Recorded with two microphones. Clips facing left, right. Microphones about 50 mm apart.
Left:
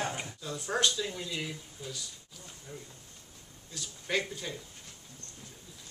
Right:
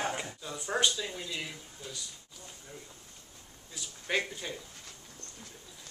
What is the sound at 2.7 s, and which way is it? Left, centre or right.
A man's voice, centre.